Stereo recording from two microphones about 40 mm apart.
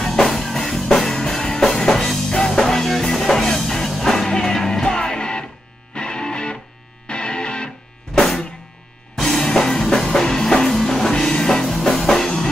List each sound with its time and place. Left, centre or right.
0.0 s music: centre; by 7.7 s left
8.1 s drum kit: centre
9.1 s music: centre